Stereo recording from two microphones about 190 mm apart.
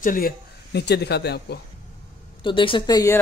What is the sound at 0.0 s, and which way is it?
Speech, 45° left (ahead or behind).